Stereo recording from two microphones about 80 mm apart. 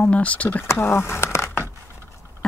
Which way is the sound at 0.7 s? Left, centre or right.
Left.